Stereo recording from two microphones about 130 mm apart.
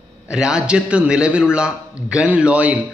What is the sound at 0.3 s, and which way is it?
A man's voice, 5° right (ahead or behind).